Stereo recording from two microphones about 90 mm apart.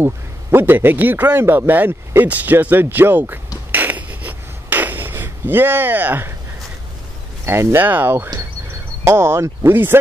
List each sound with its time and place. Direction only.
0.0 s a man's voice: 25° right (ahead or behind)
3.7 s a sound: 20° right (ahead or behind)
7.4 s a man's voice: 25° right (ahead or behind)